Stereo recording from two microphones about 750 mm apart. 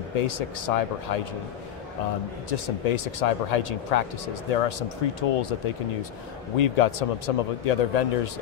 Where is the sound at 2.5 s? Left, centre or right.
Left.